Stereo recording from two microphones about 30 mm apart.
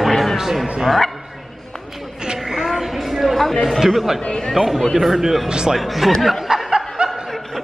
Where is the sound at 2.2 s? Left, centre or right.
Centre.